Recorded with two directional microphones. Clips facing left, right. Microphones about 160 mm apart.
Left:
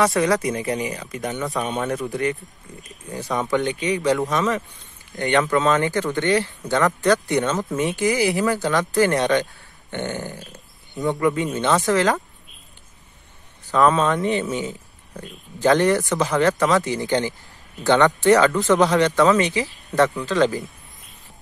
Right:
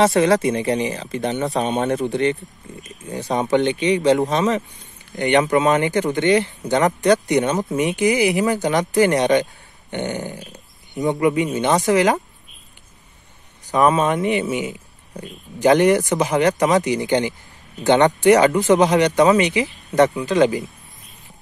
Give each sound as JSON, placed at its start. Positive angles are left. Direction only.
{"t": 0.0, "sound": "speech", "side_deg": -25}
{"t": 13.7, "sound": "speech", "side_deg": -15}